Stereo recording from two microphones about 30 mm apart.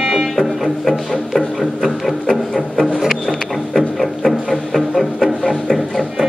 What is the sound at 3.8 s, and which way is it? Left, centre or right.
Music, centre.